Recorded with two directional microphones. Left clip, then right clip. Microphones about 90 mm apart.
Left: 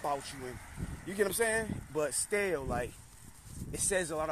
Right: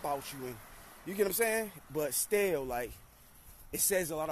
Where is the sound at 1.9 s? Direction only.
45° right (ahead or behind).